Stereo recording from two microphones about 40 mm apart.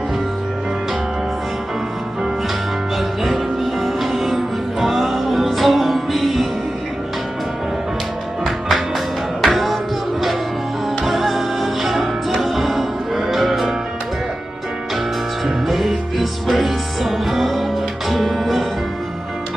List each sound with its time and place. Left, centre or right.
3.8 s music: centre
8.5 s music: centre
11.1 s music: centre
15.4 s music: centre